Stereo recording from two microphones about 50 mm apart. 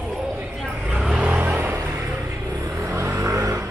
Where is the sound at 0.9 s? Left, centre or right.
Centre.